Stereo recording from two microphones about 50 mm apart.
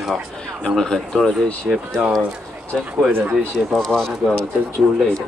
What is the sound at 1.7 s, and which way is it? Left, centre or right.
Speech, centre.